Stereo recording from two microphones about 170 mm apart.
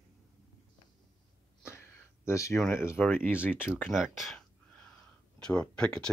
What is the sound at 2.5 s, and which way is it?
Speech, centre (ahead or behind).